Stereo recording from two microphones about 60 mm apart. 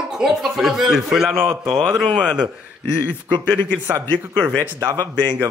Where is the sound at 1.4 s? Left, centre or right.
Right.